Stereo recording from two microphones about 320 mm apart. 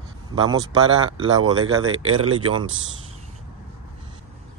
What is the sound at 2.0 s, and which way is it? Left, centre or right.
Speech, right.